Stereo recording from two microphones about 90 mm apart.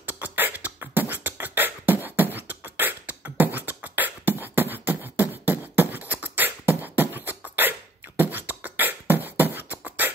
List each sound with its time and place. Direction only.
0.2 s beatboxing: 20° right (ahead or behind)